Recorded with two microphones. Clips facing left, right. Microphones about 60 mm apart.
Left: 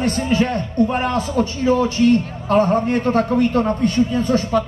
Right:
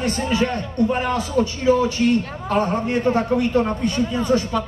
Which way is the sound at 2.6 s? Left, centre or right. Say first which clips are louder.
Left 4 dB; left.